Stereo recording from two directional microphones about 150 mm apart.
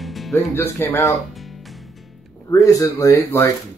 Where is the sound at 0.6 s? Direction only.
15° left (ahead or behind).